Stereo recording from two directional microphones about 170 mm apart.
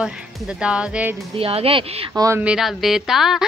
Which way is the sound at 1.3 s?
35° right (ahead or behind).